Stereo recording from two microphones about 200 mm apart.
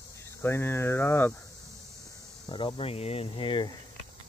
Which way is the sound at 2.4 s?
25° left (ahead or behind).